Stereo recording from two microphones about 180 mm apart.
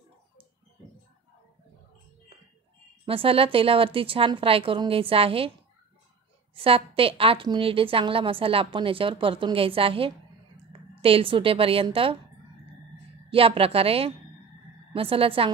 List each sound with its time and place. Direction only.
3.1 s a woman's voice: 30° right (ahead or behind)
6.5 s a woman's voice: 30° right (ahead or behind)
13.3 s a woman's voice: 30° right (ahead or behind)